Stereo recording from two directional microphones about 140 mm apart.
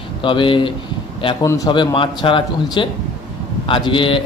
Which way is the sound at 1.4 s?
25° left (ahead or behind).